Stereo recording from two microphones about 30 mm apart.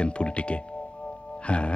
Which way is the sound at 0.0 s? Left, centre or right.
Left.